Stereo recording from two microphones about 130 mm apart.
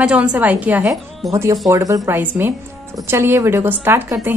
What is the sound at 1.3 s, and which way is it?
A woman's voice, 25° right (ahead or behind).